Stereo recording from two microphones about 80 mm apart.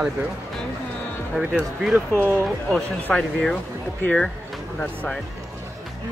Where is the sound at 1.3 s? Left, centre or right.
Centre.